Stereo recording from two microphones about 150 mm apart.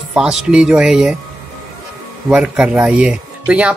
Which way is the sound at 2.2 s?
5° right (ahead or behind).